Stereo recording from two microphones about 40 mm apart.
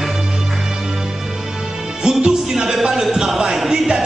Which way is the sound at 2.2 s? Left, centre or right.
Centre.